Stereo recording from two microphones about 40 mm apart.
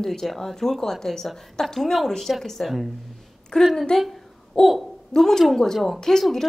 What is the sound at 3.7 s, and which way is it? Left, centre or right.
Speech, centre.